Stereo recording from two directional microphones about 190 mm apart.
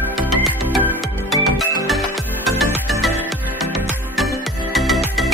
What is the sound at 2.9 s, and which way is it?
Music, centre (ahead or behind).